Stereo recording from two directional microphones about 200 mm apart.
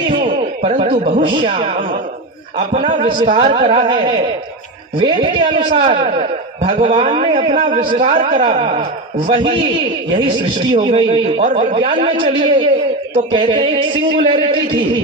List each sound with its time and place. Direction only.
0.2 s speech: 30° right (ahead or behind)
2.9 s a man's voice: 25° right (ahead or behind)
8.3 s a man's voice: 30° right (ahead or behind)
10.7 s a man's voice: 30° right (ahead or behind)